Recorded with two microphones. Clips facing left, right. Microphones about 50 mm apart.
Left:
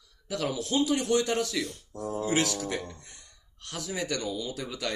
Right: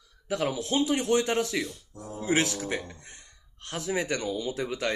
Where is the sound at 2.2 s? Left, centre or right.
Right.